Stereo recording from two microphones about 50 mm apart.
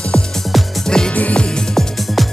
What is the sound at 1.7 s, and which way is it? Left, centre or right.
Music, centre.